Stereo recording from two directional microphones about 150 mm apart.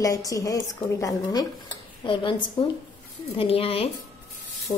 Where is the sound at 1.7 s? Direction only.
35° left (ahead or behind).